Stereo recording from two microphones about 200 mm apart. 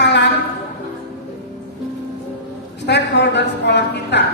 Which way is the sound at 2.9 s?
60° left (ahead or behind).